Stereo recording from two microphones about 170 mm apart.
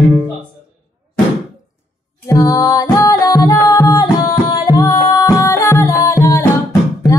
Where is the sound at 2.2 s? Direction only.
20° left (ahead or behind).